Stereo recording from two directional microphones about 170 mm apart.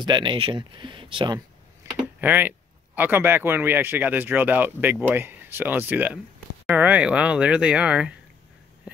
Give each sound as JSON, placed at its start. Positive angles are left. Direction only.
{"t": 0.0, "sound": "speech", "side_deg": -25}
{"t": 2.1, "sound": "speech", "side_deg": -10}